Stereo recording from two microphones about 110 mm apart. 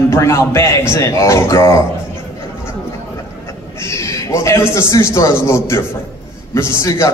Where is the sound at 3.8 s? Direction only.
25° left (ahead or behind).